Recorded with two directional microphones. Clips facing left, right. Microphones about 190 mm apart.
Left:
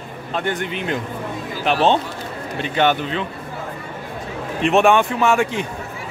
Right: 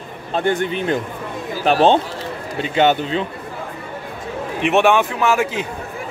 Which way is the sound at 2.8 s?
25° right (ahead or behind).